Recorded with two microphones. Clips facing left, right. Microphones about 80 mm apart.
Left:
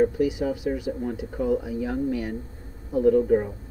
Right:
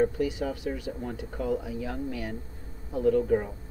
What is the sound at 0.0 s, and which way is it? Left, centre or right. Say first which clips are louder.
Speech: left 4 dB; centre.